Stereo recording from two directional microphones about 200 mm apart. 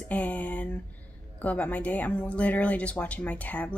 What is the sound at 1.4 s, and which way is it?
Speech, 10° left (ahead or behind).